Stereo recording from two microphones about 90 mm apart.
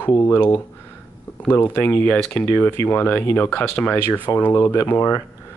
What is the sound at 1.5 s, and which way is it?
Speech, 25° left (ahead or behind).